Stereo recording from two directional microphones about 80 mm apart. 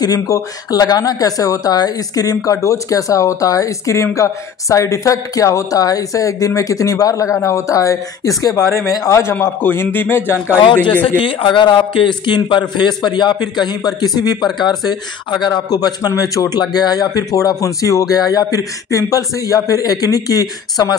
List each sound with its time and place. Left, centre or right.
0.0 s speech: left
11.1 s a man's voice: left